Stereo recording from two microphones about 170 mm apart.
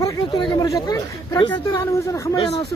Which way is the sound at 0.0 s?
20° left (ahead or behind).